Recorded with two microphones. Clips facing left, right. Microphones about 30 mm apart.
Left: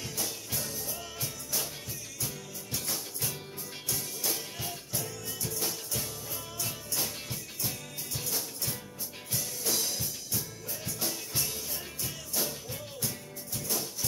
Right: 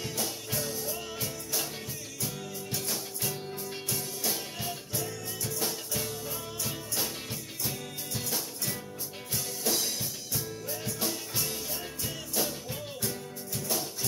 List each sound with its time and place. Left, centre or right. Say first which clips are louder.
0.6 s music: right 6 dB; centre
7.6 s music: right 3 dB; centre
9.3 s drum kit: right 2 dB; centre
11.0 s music: even; centre